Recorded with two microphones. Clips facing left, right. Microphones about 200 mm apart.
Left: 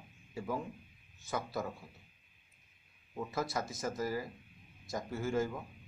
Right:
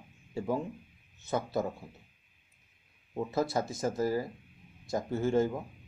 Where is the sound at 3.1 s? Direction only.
25° right (ahead or behind).